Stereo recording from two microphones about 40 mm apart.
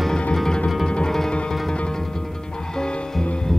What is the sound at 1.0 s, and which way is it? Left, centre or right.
Music, centre.